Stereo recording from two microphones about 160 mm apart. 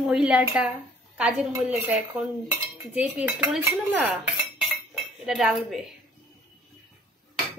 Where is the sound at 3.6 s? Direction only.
10° right (ahead or behind).